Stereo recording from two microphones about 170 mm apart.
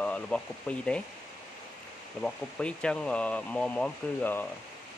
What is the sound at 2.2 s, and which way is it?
Speech, 5° left (ahead or behind).